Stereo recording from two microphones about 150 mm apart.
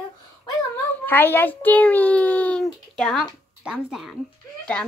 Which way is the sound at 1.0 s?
15° left (ahead or behind).